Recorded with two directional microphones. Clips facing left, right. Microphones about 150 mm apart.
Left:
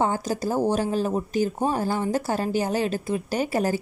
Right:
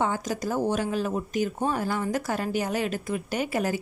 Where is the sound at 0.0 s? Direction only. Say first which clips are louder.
Left 3 dB; 35° left (ahead or behind).